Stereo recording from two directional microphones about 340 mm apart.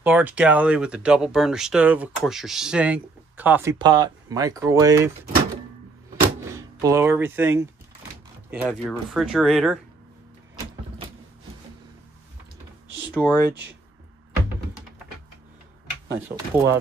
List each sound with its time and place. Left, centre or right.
0.0 s speech: centre
6.5 s speech: centre
13.1 s speech: centre
13.5 s speech: right
16.2 s speech: centre